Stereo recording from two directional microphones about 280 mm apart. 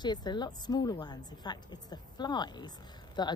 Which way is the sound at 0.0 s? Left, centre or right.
Centre.